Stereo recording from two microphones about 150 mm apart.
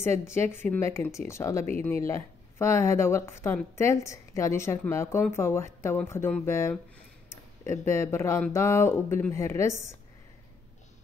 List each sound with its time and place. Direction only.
0.0 s speech: 15° left (ahead or behind)